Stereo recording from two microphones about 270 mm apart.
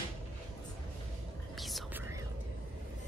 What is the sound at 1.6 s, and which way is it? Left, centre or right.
Whispering, centre.